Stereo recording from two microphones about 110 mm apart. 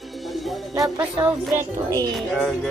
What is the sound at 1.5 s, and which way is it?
Speech, 30° right (ahead or behind).